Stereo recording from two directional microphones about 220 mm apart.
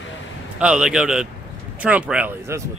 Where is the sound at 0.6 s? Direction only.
5° right (ahead or behind).